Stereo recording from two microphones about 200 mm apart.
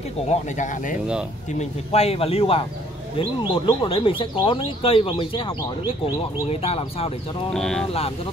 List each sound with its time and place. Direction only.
0.3 s speech: 40° left (ahead or behind)
7.5 s speech: centre (ahead or behind)